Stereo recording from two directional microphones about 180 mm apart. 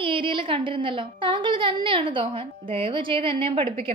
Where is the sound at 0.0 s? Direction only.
30° right (ahead or behind).